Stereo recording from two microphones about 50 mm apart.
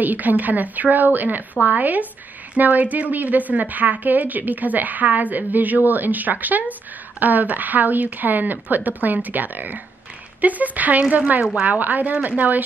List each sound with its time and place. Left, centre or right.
0.0 s a woman's voice: right